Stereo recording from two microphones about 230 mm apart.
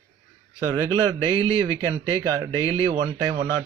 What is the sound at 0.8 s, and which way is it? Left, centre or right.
Speech, centre.